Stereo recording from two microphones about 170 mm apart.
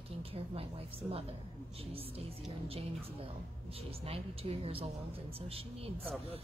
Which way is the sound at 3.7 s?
35° right (ahead or behind).